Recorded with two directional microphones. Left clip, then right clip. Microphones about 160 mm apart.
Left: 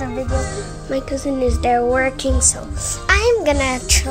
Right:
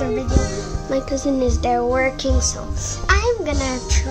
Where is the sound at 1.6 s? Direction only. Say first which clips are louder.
Left 4 dB; centre (ahead or behind).